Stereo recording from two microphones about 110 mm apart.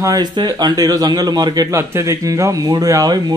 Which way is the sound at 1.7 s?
25° right (ahead or behind).